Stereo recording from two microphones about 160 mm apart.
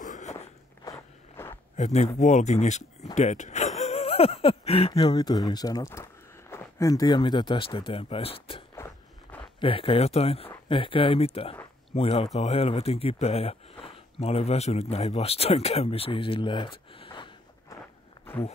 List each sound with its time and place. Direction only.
0.0 s walk: 50° left (ahead or behind)
0.8 s biting: 15° left (ahead or behind)
1.5 s speech: 45° left (ahead or behind)
3.2 s a sound: 45° left (ahead or behind)
4.9 s speech: 25° left (ahead or behind)